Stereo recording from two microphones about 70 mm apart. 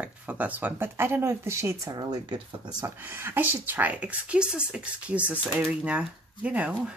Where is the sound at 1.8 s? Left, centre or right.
Right.